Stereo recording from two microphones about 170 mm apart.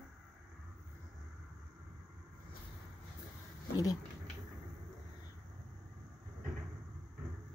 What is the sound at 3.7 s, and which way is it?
Speech, 25° left (ahead or behind).